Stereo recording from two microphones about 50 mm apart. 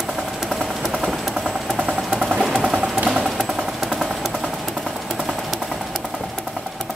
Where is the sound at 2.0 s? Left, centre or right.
Centre.